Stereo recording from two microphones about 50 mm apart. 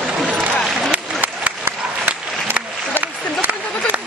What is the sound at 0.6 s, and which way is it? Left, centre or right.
Applause, centre.